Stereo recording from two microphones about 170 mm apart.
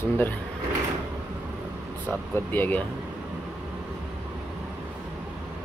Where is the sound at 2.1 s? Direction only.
10° left (ahead or behind).